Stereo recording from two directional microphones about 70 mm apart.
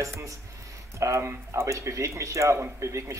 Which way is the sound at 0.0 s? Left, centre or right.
Right.